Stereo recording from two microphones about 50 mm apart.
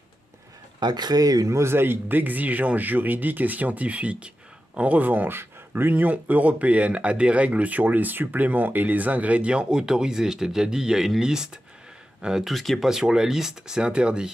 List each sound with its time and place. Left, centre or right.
1.7 s speech: right; by 12.4 s centre
12.4 s speech: centre
12.8 s speech: centre